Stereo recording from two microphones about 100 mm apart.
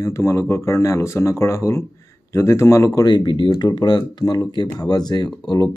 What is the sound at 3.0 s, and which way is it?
Speech, 50° left (ahead or behind).